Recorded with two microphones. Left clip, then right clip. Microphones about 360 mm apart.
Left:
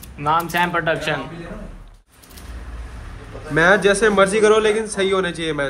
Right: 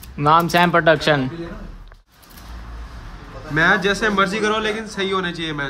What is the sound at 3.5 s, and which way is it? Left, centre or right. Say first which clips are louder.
Speech: left 2 dB; centre.